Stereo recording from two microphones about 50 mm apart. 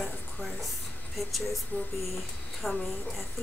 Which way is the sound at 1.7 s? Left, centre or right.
Left.